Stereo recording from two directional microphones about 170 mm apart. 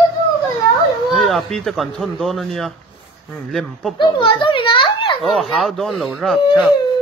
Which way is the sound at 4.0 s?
25° left (ahead or behind).